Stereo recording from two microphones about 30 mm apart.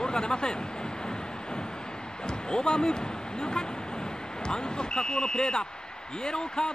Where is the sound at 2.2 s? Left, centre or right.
Left.